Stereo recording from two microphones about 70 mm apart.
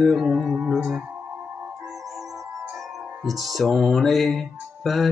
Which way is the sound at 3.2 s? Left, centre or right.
Centre.